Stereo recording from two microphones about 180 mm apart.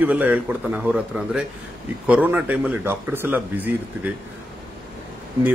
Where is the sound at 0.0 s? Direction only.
10° right (ahead or behind).